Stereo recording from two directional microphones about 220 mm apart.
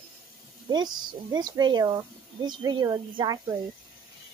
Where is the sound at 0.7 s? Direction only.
20° right (ahead or behind).